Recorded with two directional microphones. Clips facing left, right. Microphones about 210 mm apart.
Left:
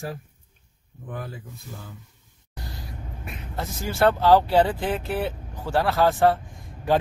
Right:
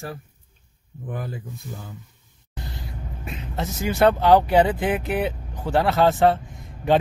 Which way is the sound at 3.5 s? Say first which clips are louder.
Right 4 dB; 20° right (ahead or behind).